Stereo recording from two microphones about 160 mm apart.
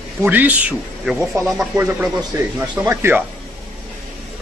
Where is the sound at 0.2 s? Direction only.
10° right (ahead or behind).